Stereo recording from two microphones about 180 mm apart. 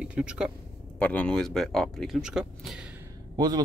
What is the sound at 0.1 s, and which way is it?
Speech, 5° right (ahead or behind).